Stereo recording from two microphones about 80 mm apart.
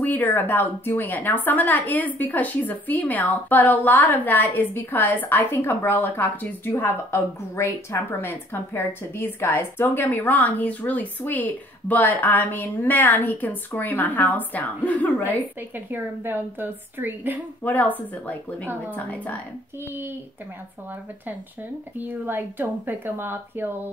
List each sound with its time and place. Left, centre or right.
0.0 s a woman's voice: left
15.7 s speech: right
17.6 s a woman's voice: left
22.0 s speech: right